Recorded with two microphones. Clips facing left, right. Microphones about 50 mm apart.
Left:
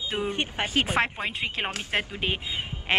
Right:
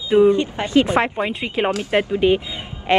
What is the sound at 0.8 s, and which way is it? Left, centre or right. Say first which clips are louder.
Speech: right 7 dB; centre.